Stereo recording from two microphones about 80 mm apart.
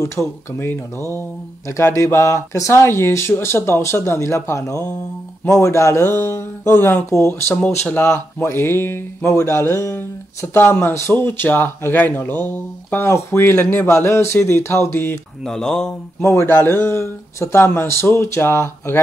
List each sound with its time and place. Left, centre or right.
0.0 s speech: left
15.4 s speech: centre
16.2 s speech: left